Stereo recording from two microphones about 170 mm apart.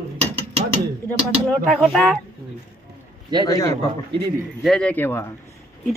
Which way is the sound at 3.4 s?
20° left (ahead or behind).